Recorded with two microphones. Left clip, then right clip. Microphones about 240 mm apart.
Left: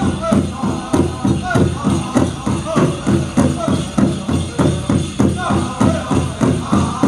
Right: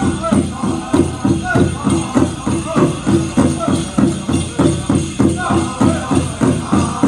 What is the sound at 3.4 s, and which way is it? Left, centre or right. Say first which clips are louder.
Music: right 1 dB; left.